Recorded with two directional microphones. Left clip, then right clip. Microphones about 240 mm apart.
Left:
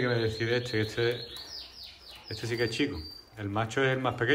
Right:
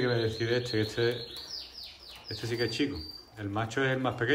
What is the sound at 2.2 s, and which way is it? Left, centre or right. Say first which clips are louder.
Speech: left 1 dB; centre.